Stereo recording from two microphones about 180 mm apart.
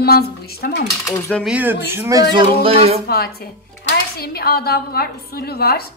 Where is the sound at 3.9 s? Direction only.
60° left (ahead or behind).